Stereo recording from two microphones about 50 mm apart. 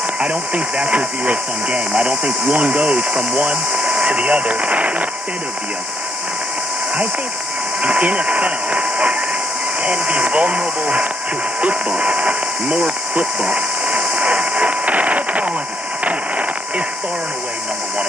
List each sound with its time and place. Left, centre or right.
0.2 s speech: right
7.8 s speech: right
12.0 s speech: right
13.2 s a sound: right
16.0 s radio: right